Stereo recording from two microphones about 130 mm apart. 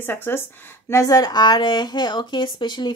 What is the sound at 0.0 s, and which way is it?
Speech, 15° left (ahead or behind).